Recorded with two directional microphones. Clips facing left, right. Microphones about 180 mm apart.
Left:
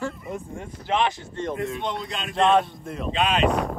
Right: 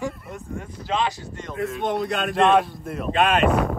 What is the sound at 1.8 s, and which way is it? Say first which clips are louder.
Speech: right 6 dB; 60° right (ahead or behind).